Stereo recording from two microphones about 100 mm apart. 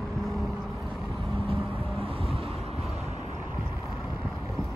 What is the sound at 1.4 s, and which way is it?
Vehicle, 70° right (ahead or behind).